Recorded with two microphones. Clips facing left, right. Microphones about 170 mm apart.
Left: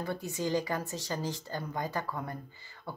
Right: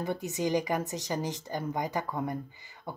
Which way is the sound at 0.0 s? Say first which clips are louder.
Right 3 dB; 20° right (ahead or behind).